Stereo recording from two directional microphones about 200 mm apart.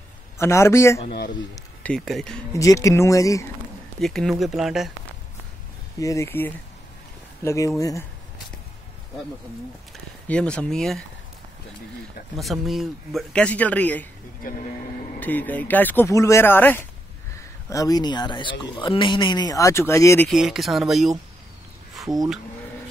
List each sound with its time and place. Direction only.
0.4 s speech: 15° left (ahead or behind)
2.5 s speech: 15° left (ahead or behind)
4.0 s speech: centre (ahead or behind)
5.9 s speech: 15° left (ahead or behind)
10.2 s speech: 5° left (ahead or behind)
12.4 s speech: centre (ahead or behind)
15.1 s speech: 10° left (ahead or behind)
20.2 s speech: centre (ahead or behind)